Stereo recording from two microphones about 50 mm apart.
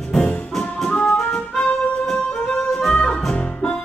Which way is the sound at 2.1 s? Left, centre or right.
Centre.